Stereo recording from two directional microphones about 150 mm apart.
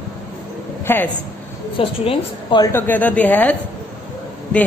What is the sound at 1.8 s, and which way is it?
Speech, 35° left (ahead or behind).